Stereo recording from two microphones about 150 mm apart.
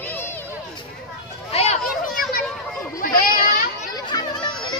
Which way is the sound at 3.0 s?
70° left (ahead or behind).